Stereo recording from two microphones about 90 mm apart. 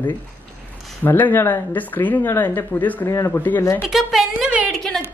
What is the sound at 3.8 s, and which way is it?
A woman's voice, 5° right (ahead or behind).